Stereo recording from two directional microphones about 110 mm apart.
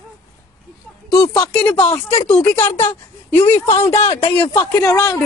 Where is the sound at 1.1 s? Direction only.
35° left (ahead or behind).